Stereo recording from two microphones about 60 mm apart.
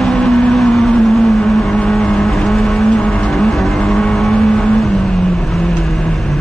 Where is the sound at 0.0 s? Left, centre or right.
Centre.